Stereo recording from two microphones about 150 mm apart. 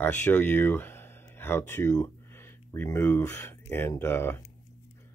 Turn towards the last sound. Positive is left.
turn(degrees=15)  # may be behind; listen again after turning